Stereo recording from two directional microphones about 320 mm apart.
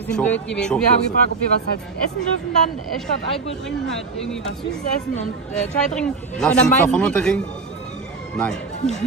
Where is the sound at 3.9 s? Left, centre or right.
Centre.